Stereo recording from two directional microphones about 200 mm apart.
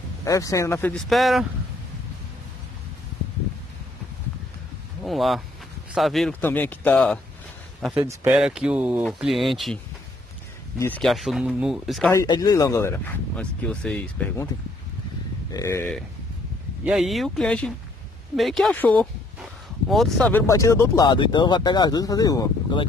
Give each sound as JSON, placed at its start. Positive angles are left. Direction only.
{"t": 0.2, "sound": "speech", "side_deg": 15}
{"t": 5.0, "sound": "speech", "side_deg": 0}
{"t": 8.0, "sound": "speech", "side_deg": -15}
{"t": 10.8, "sound": "speech", "side_deg": 5}
{"t": 12.1, "sound": "speech", "side_deg": 15}
{"t": 15.5, "sound": "speech", "side_deg": 15}
{"t": 16.8, "sound": "speech", "side_deg": 0}